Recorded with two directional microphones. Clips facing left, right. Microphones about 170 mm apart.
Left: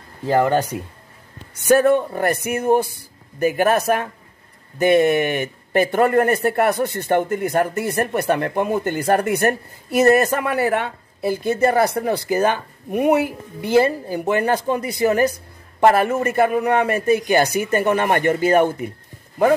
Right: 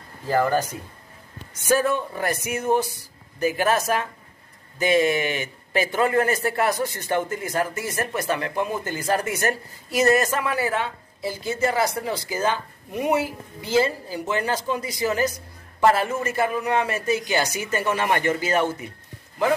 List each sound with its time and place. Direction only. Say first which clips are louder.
0.4 s a man's voice: left 3 dB; 70° left (ahead or behind)